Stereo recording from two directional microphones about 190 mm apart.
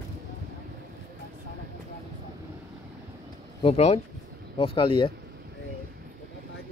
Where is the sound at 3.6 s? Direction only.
35° left (ahead or behind).